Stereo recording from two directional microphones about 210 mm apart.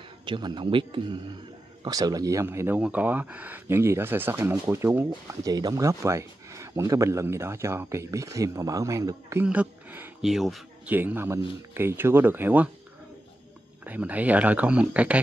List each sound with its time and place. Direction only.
0.2 s a man's voice: 20° right (ahead or behind)
13.8 s speech: 5° right (ahead or behind)